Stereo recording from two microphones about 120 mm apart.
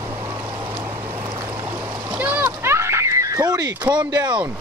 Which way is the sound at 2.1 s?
15° right (ahead or behind).